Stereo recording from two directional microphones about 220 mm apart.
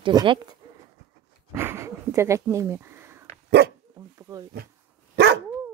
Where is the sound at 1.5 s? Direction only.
10° right (ahead or behind).